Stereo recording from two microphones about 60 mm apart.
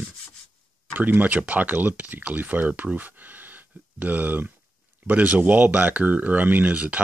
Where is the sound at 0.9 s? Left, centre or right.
Right.